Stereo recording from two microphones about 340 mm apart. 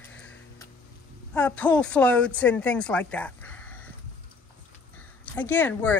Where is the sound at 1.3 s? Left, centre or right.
Centre.